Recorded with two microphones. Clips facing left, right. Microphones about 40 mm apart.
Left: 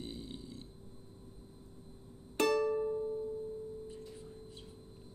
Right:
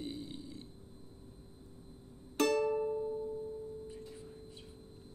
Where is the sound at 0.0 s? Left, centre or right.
Centre.